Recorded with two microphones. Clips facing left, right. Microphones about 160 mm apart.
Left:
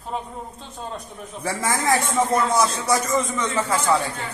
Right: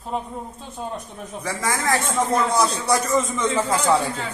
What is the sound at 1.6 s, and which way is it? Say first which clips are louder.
Speech: left 1 dB; 20° left (ahead or behind).